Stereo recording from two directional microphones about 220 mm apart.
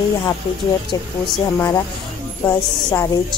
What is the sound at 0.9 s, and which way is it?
Speech, 15° left (ahead or behind).